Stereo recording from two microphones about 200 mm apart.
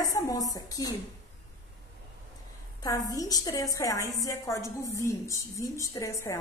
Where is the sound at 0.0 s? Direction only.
15° left (ahead or behind).